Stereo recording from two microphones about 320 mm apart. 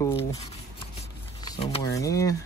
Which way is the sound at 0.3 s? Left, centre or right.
Centre.